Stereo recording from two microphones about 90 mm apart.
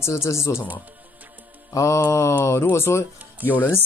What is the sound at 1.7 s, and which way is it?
Speech, 35° left (ahead or behind).